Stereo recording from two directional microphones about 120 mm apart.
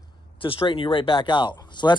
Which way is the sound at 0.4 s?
45° left (ahead or behind).